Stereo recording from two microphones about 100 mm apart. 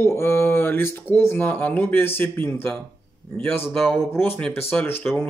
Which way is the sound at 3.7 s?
5° left (ahead or behind).